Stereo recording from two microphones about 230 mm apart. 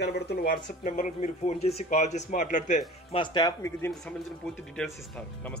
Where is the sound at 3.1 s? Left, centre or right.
Centre.